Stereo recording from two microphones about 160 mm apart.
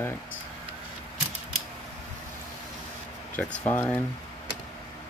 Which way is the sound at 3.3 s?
10° left (ahead or behind).